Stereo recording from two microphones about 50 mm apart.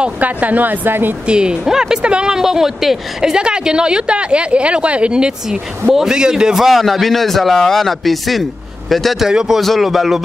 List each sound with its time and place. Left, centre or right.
0.2 s a woman's voice: right
1.2 s a man's voice: centre
9.3 s speech: centre
9.6 s a man's voice: centre